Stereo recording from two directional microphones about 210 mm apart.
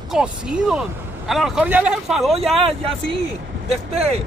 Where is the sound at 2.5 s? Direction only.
25° right (ahead or behind).